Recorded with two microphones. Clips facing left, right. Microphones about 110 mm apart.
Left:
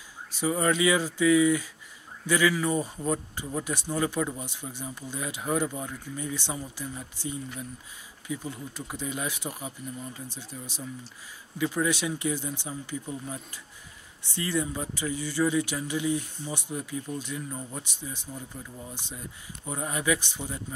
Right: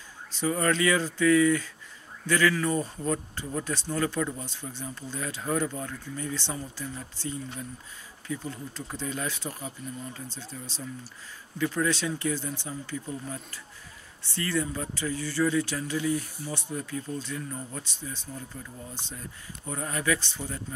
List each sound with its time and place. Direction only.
0.4 s speech: 10° left (ahead or behind)